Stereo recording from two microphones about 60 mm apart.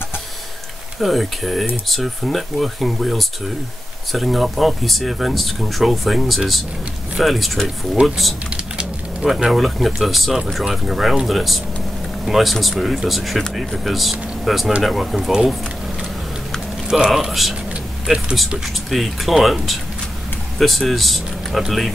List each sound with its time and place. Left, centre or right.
1.0 s speech: centre
8.5 s typing: centre
9.2 s speech: centre
17.0 s speech: centre